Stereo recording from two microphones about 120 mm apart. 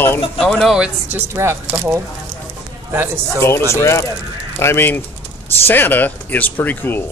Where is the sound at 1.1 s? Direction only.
20° right (ahead or behind).